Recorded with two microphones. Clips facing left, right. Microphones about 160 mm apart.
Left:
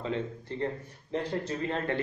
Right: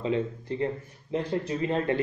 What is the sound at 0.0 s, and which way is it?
Speech, 15° right (ahead or behind).